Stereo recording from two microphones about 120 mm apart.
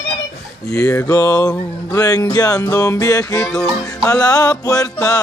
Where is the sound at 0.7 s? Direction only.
25° left (ahead or behind).